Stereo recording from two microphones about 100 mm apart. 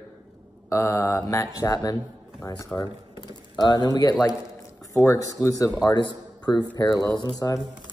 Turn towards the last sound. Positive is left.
turn(degrees=40)  # may be behind; listen again after turning